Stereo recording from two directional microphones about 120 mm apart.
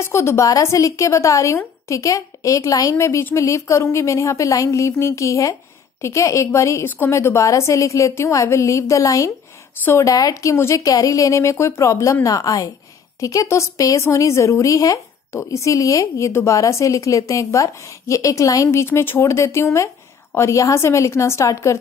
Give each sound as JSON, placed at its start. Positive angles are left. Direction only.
{"t": 0.0, "sound": "a woman's voice", "side_deg": 20}